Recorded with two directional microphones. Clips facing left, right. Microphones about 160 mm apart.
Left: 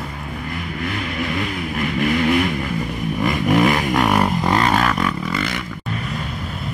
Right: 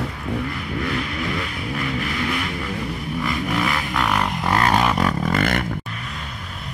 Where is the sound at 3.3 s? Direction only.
20° left (ahead or behind); by 4.7 s 5° left (ahead or behind).